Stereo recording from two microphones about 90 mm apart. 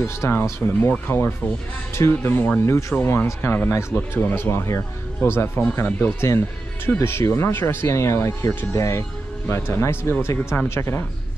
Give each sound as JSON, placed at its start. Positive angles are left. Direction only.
{"t": 0.0, "sound": "speech", "side_deg": 30}